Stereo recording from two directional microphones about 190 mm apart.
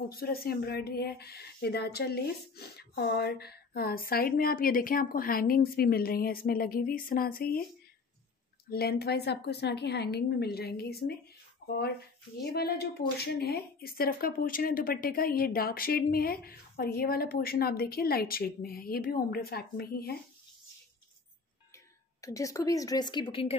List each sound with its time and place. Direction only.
0.1 s a woman's voice: 50° left (ahead or behind)
8.6 s a woman's voice: 55° left (ahead or behind)
11.6 s a sound: 60° left (ahead or behind)
12.4 s a woman's voice: 55° left (ahead or behind)
21.7 s speech: 15° left (ahead or behind)